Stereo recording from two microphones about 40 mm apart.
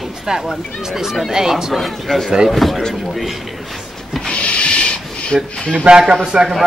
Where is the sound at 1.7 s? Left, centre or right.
Centre.